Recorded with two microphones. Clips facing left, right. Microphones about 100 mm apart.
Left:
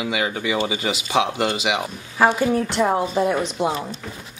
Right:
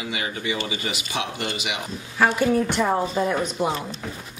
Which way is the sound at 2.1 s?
20° left (ahead or behind).